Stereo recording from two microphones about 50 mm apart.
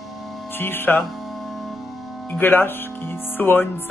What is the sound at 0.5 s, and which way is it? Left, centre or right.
Speech, left.